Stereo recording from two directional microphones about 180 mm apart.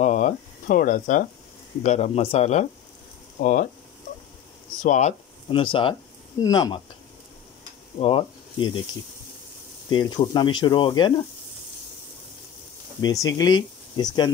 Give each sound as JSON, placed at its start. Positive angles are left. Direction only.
{"t": 0.0, "sound": "speech", "side_deg": 45}
{"t": 3.3, "sound": "speech", "side_deg": 50}
{"t": 4.8, "sound": "speech", "side_deg": 40}
{"t": 5.5, "sound": "speech", "side_deg": 30}
{"t": 8.0, "sound": "speech", "side_deg": 30}
{"t": 9.8, "sound": "speech", "side_deg": 25}
{"t": 13.0, "sound": "speech", "side_deg": 20}